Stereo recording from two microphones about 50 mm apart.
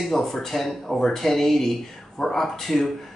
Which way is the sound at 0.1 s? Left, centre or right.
Centre.